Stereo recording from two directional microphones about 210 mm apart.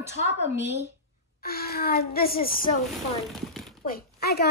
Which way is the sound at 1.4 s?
45° left (ahead or behind).